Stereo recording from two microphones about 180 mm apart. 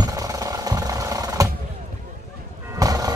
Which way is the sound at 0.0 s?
20° right (ahead or behind).